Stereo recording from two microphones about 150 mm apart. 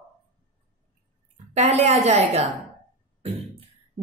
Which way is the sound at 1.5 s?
45° right (ahead or behind).